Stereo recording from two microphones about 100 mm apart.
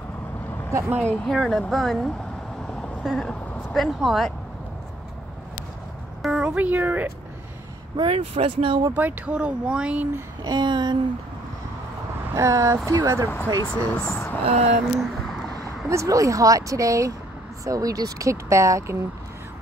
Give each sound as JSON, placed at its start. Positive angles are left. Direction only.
{"t": 0.7, "sound": "speech", "side_deg": -30}
{"t": 1.0, "sound": "speech", "side_deg": 5}
{"t": 2.6, "sound": "vehicle", "side_deg": 10}
{"t": 3.7, "sound": "speech", "side_deg": 0}
{"t": 6.2, "sound": "speech", "side_deg": -10}
{"t": 7.9, "sound": "speech", "side_deg": -65}
{"t": 8.9, "sound": "speech", "side_deg": -15}
{"t": 10.4, "sound": "a sound", "side_deg": -45}
{"t": 12.4, "sound": "speech", "side_deg": -30}
{"t": 13.7, "sound": "speech", "side_deg": 10}
{"t": 14.4, "sound": "a sound", "side_deg": -90}
{"t": 15.0, "sound": "a sound", "side_deg": 0}
{"t": 15.6, "sound": "speech", "side_deg": -30}